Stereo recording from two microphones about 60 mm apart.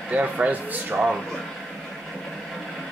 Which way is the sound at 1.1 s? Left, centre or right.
Centre.